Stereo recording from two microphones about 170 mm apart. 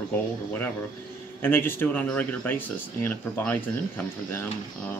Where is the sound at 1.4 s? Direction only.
10° left (ahead or behind).